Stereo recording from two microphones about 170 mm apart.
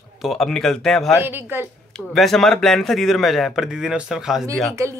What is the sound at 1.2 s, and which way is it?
Speech, 10° right (ahead or behind).